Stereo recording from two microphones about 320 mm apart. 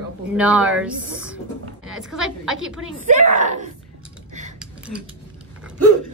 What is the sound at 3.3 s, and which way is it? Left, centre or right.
Speech, right.